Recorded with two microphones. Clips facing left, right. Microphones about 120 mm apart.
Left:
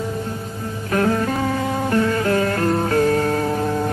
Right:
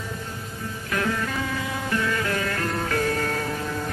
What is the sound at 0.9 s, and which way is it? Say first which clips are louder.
Music: left 8 dB; 40° left (ahead or behind).